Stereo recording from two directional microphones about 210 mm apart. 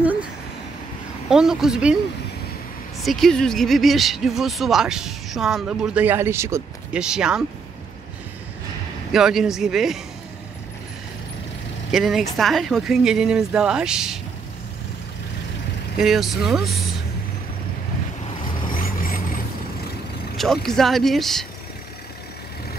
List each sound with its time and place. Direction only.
0.0 s a sound: 5° right (ahead or behind)
1.3 s speech: 5° right (ahead or behind)
3.0 s speech: centre (ahead or behind)
9.1 s speech: centre (ahead or behind)
11.9 s speech: centre (ahead or behind)
16.0 s speech: centre (ahead or behind)
18.7 s vehicle: 40° left (ahead or behind)
20.3 s speech: centre (ahead or behind)